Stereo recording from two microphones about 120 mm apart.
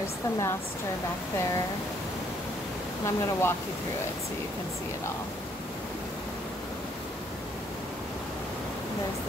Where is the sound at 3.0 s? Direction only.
20° left (ahead or behind).